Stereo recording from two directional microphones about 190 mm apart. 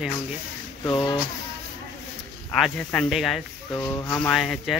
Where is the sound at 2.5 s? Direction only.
5° left (ahead or behind).